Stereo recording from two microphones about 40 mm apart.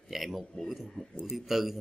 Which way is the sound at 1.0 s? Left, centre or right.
Left.